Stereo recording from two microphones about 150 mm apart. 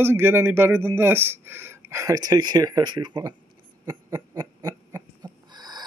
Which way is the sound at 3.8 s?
25° right (ahead or behind).